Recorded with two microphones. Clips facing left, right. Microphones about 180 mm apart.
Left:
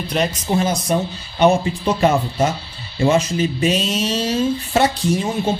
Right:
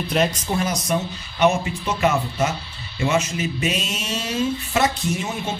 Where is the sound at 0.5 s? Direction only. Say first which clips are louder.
Left 4 dB; 25° left (ahead or behind).